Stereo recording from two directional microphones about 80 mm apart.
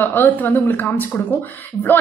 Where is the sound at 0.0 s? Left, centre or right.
Left.